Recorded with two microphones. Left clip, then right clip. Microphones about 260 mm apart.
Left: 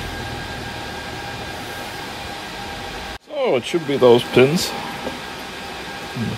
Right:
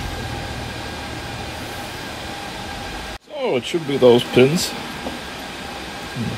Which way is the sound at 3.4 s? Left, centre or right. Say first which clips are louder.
Left 2 dB; left.